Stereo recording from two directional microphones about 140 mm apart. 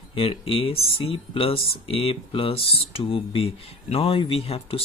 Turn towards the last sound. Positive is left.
turn(degrees=45)  # may be behind; listen again after turning